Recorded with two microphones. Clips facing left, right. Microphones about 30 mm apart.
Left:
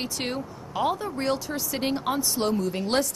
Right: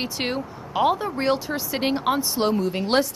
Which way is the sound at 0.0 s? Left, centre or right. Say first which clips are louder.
Right 4 dB; centre.